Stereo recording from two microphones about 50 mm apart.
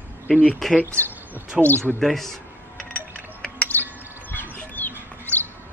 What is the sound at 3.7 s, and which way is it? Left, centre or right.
Music, left.